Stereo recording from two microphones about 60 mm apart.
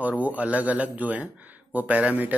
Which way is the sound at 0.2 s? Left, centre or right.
Right.